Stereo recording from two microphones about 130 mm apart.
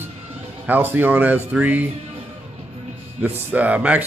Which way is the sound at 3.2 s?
10° right (ahead or behind).